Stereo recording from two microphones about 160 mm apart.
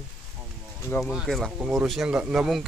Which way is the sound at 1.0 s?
Centre (ahead or behind).